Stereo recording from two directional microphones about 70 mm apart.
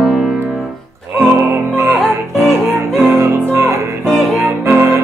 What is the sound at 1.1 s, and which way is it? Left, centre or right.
Music, right.